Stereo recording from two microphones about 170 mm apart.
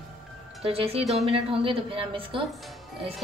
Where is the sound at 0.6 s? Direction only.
35° right (ahead or behind).